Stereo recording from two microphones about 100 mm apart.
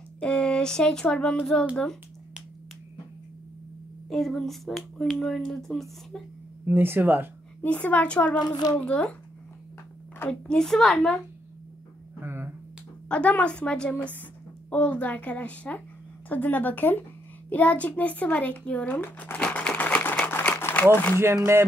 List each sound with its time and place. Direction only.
0.2 s speech: 10° left (ahead or behind)
4.1 s speech: 5° left (ahead or behind)
6.6 s speech: 20° right (ahead or behind)
7.6 s a woman's voice: 15° left (ahead or behind)
8.4 s speech: 45° left (ahead or behind)
8.7 s a woman's voice: 10° left (ahead or behind)
10.1 s a woman's voice: 20° left (ahead or behind)
10.5 s speech: 5° left (ahead or behind)
12.2 s a sound: 25° right (ahead or behind)
13.1 s a woman's voice: 10° left (ahead or behind)